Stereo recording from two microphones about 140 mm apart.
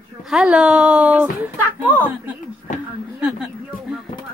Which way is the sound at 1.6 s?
10° left (ahead or behind).